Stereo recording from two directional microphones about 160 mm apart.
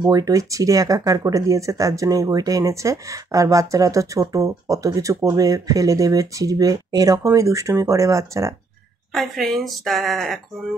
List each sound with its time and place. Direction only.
0.0 s speech: 25° right (ahead or behind)
9.1 s speech: centre (ahead or behind)